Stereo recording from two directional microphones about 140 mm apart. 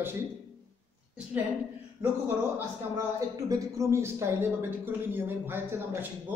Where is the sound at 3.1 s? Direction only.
25° right (ahead or behind).